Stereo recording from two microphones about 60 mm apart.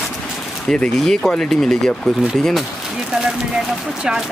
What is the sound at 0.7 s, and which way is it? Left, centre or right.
Speech, centre.